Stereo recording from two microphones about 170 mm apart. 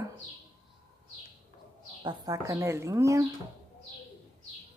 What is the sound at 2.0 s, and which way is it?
Speech, 25° right (ahead or behind).